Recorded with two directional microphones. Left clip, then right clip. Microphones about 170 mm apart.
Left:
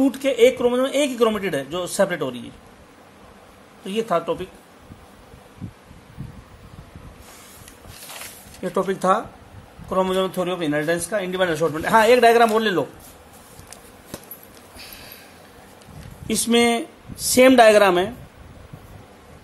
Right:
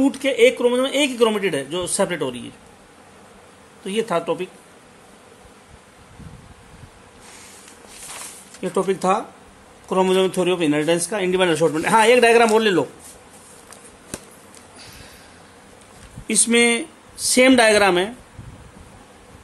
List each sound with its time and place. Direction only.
0.0 s speech: 10° right (ahead or behind)
3.8 s speech: 15° right (ahead or behind)
8.5 s speech: 10° right (ahead or behind)
9.8 s a man's voice: 25° right (ahead or behind)
16.3 s speech: centre (ahead or behind)